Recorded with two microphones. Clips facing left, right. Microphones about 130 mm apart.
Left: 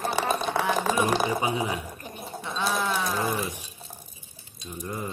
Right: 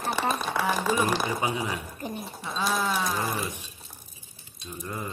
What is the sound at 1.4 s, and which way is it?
Speech, 25° left (ahead or behind).